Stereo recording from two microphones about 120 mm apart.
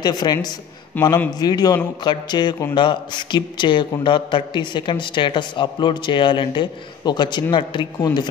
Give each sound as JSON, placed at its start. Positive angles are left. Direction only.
{"t": 0.0, "sound": "a man's voice", "side_deg": 35}